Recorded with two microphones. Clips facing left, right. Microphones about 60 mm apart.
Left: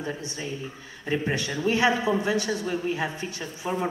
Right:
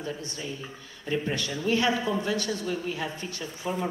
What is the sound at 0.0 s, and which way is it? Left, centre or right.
A man's voice, left.